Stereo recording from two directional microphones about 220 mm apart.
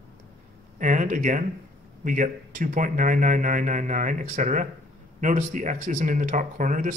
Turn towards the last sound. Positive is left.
turn(degrees=-35)  # may be behind; listen again after turning